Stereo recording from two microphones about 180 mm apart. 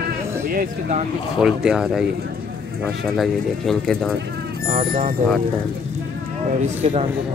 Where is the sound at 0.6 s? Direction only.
45° right (ahead or behind).